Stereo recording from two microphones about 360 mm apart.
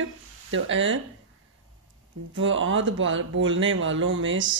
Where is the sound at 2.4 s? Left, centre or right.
Right.